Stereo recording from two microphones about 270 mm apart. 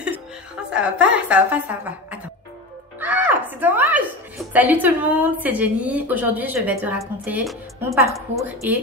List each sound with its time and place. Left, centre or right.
0.7 s a woman's voice: centre